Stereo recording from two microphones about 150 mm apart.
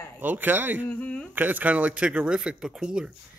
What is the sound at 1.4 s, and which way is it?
Speech, 10° right (ahead or behind).